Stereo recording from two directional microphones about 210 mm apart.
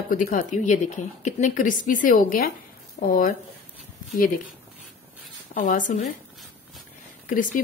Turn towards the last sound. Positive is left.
turn(degrees=40)  # may be behind; listen again after turning